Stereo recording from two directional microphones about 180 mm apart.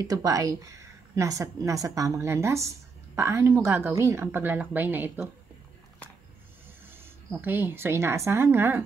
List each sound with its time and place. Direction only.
0.0 s speech: 20° right (ahead or behind)
7.2 s speech: 10° right (ahead or behind)